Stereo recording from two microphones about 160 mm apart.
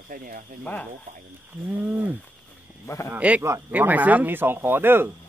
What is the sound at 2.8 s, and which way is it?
Speech, 20° left (ahead or behind).